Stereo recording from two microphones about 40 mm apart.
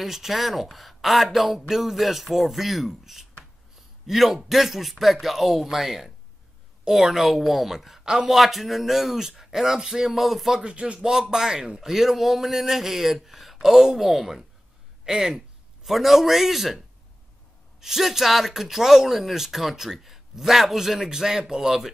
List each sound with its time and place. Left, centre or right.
0.0 s speech: centre
8.3 s speech: centre
10.6 s speech: right
11.0 s speech: centre
11.8 s a man's voice: centre